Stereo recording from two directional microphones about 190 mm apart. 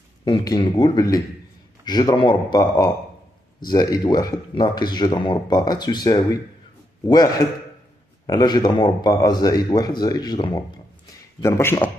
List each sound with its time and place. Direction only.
0.2 s speech: 20° left (ahead or behind)